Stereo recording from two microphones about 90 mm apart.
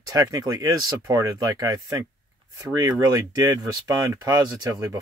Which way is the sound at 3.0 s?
50° right (ahead or behind).